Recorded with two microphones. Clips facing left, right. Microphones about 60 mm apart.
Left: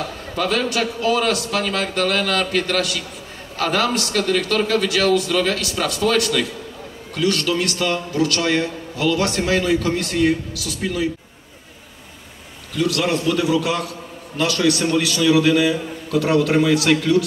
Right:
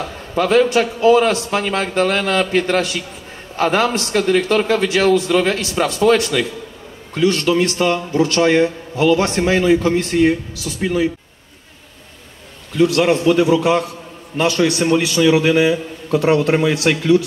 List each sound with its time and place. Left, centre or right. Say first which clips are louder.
0.3 s a man's voice: right 8 dB; right
12.7 s a man's voice: right 6 dB; right